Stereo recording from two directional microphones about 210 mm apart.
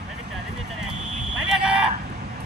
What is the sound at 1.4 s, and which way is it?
Fire alarm, 5° right (ahead or behind).